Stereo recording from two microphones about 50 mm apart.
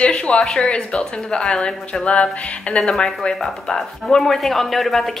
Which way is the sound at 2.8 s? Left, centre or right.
Centre.